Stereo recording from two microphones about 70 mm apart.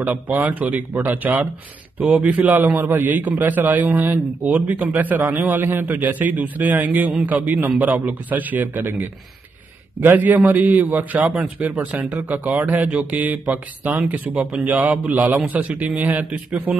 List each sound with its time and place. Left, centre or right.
0.1 s a man's voice: right
9.9 s a man's voice: right